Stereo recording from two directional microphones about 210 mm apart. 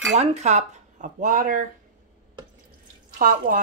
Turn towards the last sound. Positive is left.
turn(degrees=-40)  # may be behind; listen again after turning